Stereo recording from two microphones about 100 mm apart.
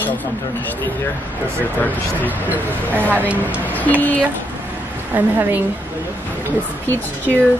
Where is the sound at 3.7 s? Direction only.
15° left (ahead or behind).